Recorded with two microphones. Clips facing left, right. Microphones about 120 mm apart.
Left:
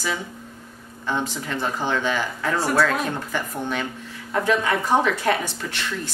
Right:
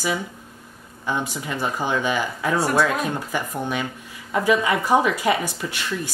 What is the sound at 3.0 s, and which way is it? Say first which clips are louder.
Speech: right 1 dB; 10° right (ahead or behind).